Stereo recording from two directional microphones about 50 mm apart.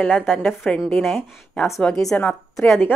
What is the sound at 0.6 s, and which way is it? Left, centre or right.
Speech, left.